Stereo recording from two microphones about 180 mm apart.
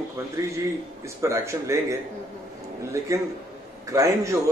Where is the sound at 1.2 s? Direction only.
15° right (ahead or behind).